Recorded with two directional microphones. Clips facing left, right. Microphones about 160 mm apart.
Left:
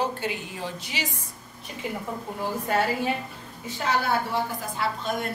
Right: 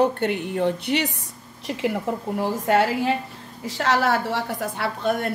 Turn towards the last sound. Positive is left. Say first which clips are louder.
# right 4 dB
turn(degrees=-65)  # may be behind; listen again after turning